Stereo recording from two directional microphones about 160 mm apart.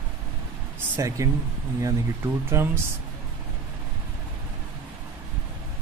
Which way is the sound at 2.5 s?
15° right (ahead or behind).